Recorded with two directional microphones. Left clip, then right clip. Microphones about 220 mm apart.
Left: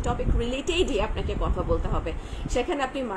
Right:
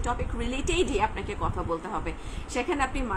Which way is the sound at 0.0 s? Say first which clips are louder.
Left 2 dB; 15° right (ahead or behind).